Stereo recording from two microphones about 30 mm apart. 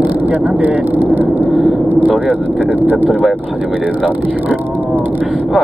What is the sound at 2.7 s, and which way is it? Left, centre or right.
Speech, right.